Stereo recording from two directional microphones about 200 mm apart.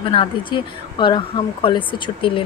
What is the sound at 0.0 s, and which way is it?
A woman's voice, 25° left (ahead or behind).